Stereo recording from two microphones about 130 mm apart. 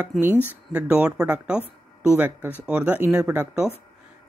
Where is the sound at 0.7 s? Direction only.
10° right (ahead or behind).